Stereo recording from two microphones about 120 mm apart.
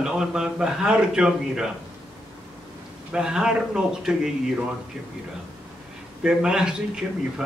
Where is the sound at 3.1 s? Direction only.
5° right (ahead or behind).